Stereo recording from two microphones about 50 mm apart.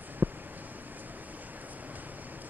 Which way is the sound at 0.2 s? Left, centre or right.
Right.